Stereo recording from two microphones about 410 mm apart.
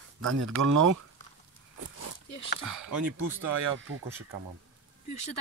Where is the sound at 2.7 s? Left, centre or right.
Right.